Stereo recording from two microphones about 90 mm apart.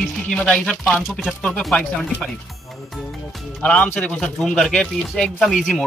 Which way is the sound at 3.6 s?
15° left (ahead or behind).